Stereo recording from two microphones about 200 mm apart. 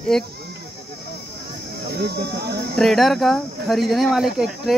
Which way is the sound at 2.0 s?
55° right (ahead or behind).